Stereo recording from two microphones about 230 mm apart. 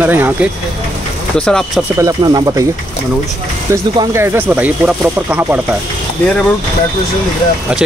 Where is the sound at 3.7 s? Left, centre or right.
Centre.